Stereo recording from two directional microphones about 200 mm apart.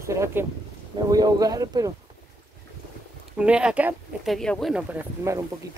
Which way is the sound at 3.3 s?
5° right (ahead or behind).